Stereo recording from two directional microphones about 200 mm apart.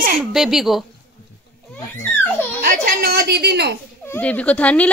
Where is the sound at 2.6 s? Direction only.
45° right (ahead or behind).